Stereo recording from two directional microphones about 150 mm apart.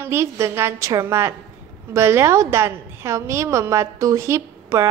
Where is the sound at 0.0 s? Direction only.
15° right (ahead or behind).